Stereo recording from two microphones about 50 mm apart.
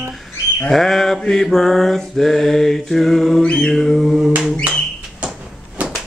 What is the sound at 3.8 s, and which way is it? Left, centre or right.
Mantra, centre.